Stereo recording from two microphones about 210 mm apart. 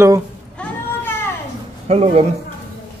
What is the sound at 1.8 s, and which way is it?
Speech, 30° right (ahead or behind).